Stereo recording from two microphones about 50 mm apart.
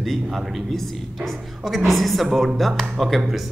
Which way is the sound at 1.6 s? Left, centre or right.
Centre.